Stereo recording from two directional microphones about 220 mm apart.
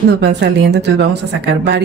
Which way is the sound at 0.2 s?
50° right (ahead or behind).